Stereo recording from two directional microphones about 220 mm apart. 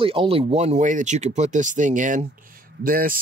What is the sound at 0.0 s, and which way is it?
Speech, 25° right (ahead or behind).